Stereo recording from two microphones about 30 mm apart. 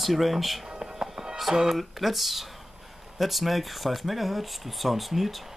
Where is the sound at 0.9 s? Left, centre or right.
Centre.